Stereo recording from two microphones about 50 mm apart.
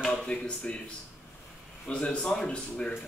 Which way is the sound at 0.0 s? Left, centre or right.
Centre.